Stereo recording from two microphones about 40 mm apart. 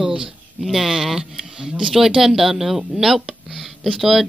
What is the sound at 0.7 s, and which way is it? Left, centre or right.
Speech, centre.